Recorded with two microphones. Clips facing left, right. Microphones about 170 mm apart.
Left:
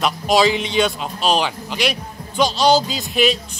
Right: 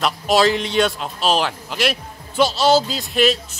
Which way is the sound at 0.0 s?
Centre (ahead or behind).